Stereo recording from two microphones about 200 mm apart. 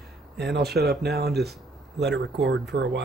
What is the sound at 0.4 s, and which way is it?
Speech, 55° right (ahead or behind).